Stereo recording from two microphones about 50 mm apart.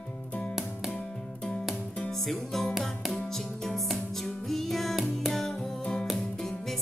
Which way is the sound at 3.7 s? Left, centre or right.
Centre.